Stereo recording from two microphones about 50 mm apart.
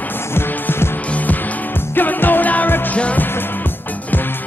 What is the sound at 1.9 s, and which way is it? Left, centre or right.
Music, left.